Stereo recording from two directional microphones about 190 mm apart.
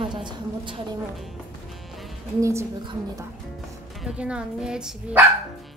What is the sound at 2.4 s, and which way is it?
Speech, 15° right (ahead or behind).